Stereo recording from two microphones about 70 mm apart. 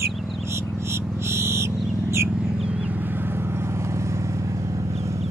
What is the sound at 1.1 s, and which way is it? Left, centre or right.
Frog, right.